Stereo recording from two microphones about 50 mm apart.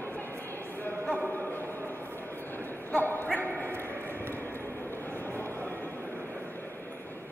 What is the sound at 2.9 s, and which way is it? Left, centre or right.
Bow-wow, left.